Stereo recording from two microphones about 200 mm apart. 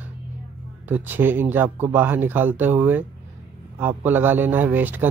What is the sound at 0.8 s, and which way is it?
Speech, 10° right (ahead or behind).